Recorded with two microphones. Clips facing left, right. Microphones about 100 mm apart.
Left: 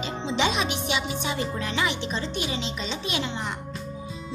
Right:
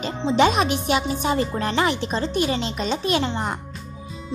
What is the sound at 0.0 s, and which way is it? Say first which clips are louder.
Speech: right 7 dB; 45° right (ahead or behind).